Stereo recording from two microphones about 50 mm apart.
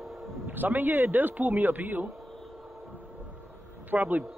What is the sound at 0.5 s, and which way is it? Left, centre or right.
A man's voice, right.